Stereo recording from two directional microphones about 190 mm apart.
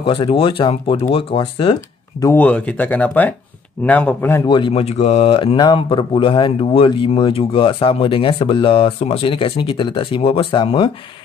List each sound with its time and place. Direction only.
0.0 s speech: 30° left (ahead or behind)
2.1 s speech: 15° left (ahead or behind)
4.5 s speech: 25° left (ahead or behind)